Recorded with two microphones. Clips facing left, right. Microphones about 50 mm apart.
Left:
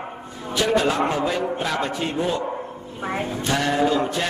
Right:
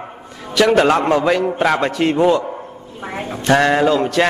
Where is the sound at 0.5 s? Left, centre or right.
Right.